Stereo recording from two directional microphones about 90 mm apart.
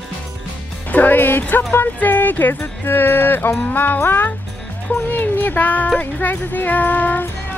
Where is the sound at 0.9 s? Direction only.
20° left (ahead or behind).